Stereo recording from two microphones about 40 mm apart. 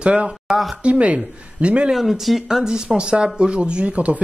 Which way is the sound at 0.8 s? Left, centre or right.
Right.